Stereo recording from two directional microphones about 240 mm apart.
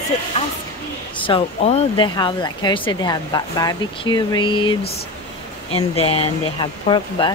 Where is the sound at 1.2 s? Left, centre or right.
Left.